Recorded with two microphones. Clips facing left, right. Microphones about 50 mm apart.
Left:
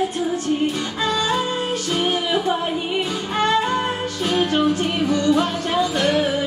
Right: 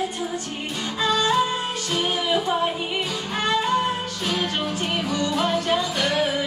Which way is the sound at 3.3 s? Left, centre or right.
Left.